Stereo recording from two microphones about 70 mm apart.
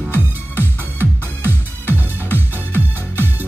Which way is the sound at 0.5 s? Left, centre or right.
Right.